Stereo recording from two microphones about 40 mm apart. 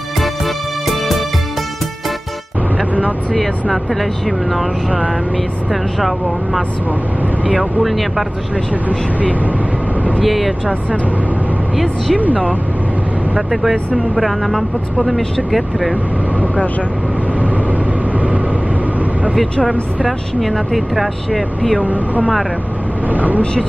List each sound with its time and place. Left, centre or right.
0.8 s music: centre
3.3 s speech: centre
5.7 s speech: centre
10.2 s speech: centre
11.7 s speech: centre
13.5 s speech: centre
20.1 s speech: centre
23.0 s speech: right